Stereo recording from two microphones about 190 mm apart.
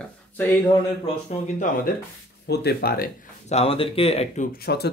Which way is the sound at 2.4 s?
60° left (ahead or behind).